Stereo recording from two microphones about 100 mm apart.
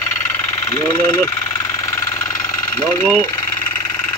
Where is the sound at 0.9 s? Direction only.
30° left (ahead or behind).